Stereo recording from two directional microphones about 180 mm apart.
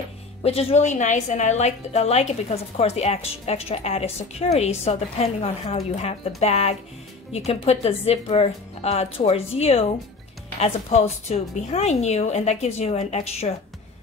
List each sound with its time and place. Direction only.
0.4 s a woman's voice: 35° left (ahead or behind)